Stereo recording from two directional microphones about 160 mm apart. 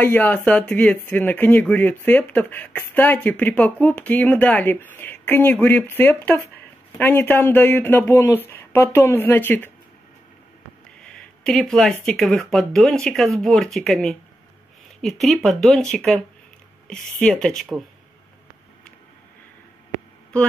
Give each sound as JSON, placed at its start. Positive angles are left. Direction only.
{"t": 0.0, "sound": "speech", "side_deg": 10}
{"t": 11.0, "sound": "speech", "side_deg": 5}